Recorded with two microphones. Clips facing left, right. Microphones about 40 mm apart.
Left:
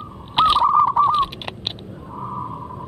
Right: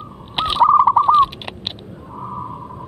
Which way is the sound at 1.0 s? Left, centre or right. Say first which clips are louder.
Right 5 dB; centre.